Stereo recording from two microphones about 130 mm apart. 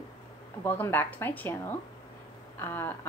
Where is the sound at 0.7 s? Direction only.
15° left (ahead or behind).